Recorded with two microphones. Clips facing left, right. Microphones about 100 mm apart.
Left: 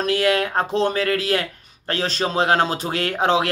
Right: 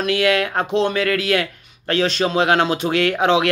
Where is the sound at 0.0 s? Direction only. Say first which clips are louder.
Right 1 dB; 40° left (ahead or behind).